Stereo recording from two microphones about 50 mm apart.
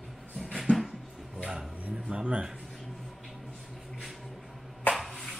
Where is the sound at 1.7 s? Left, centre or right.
Right.